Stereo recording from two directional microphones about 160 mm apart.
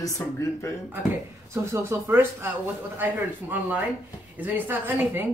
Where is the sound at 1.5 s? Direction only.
15° right (ahead or behind).